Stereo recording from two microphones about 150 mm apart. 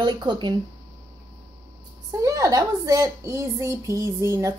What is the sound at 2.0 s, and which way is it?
A woman's voice, 20° right (ahead or behind).